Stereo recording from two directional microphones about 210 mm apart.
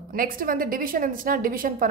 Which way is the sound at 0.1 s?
40° right (ahead or behind).